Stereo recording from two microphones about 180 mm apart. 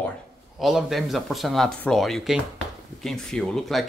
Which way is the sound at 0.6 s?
Centre (ahead or behind).